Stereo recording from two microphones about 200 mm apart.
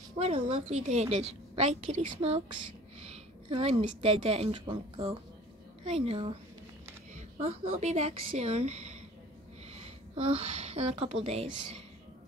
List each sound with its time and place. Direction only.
0.2 s a woman's voice: 30° right (ahead or behind)